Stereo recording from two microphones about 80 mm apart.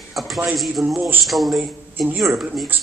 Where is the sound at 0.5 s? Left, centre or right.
Centre.